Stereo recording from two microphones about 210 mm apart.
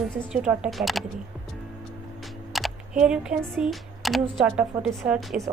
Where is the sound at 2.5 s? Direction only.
Centre (ahead or behind).